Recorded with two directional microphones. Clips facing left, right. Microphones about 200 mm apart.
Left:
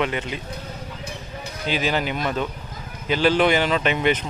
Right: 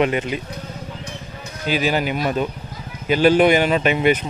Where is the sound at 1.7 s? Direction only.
10° right (ahead or behind).